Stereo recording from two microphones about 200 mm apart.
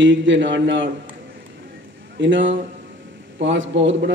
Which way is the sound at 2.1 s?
65° right (ahead or behind).